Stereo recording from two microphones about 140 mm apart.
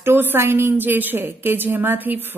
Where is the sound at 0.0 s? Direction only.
15° right (ahead or behind).